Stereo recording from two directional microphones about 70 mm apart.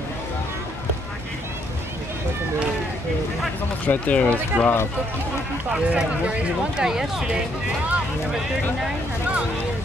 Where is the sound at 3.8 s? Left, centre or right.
Left.